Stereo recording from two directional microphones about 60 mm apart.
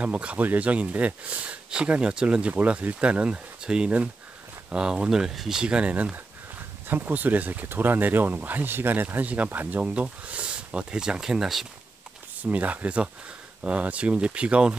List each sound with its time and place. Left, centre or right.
0.0 s speech: centre
5.6 s speech: centre
6.9 s speech: right; by 11.6 s centre
12.4 s speech: right